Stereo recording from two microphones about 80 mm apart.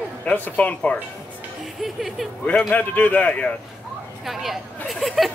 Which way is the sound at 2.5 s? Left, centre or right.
Centre.